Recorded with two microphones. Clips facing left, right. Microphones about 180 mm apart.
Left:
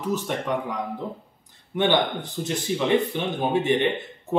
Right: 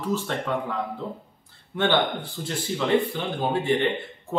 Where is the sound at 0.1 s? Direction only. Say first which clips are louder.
Left 1 dB; 15° left (ahead or behind).